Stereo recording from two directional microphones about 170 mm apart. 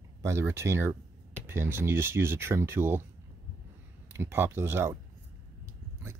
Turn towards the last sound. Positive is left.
turn(degrees=-15)  # may be behind; listen again after turning